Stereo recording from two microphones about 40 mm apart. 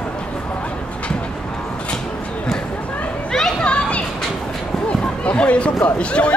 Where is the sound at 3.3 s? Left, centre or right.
Centre.